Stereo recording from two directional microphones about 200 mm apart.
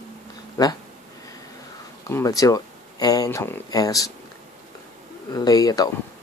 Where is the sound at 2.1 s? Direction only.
15° left (ahead or behind).